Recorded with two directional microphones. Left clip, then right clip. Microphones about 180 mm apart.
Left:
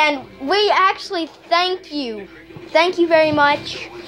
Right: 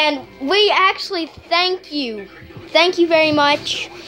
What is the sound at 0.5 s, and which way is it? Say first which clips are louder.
A child's voice: right 1 dB; 15° right (ahead or behind).